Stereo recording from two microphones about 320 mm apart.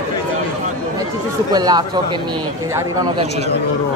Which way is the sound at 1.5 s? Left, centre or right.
Centre.